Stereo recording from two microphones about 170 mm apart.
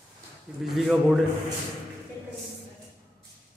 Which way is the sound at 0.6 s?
Centre (ahead or behind).